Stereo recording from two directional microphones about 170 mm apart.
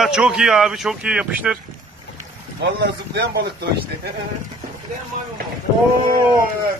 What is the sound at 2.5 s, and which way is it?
Speech, 85° right.